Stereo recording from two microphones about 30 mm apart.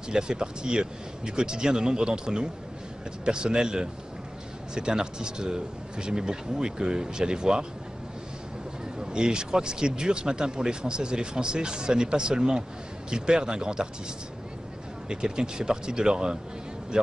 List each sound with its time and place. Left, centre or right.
0.1 s speech: right
9.0 s speech: right
15.0 s speech: right